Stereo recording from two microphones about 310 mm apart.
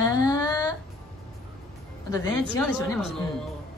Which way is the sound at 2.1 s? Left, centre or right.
Centre.